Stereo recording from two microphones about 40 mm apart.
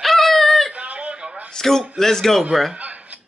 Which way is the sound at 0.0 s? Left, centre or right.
Centre.